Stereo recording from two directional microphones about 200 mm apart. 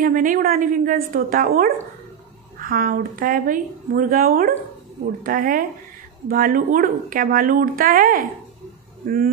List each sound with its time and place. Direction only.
0.0 s speech: 40° right (ahead or behind)